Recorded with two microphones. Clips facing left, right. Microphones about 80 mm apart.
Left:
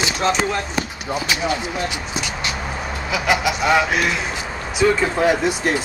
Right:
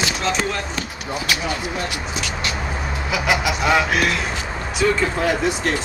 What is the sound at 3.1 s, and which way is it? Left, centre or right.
Speech, centre.